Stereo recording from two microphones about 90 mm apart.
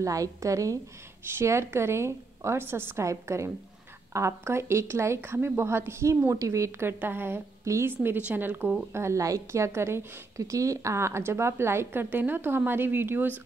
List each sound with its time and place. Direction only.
0.0 s a woman's voice: 40° right (ahead or behind); by 8.7 s 20° right (ahead or behind)
8.9 s a woman's voice: 35° right (ahead or behind)